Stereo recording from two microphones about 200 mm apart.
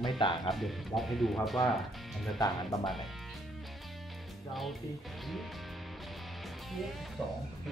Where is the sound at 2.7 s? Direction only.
15° left (ahead or behind).